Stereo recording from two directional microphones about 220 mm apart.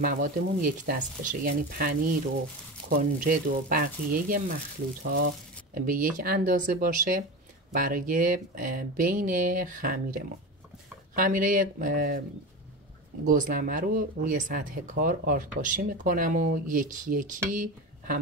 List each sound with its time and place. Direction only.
0.0 s speech: 40° right (ahead or behind)
5.8 s speech: 40° right (ahead or behind)
13.2 s speech: 40° right (ahead or behind)